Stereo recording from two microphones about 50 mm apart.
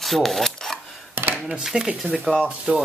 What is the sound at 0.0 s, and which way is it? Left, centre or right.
Filing, centre.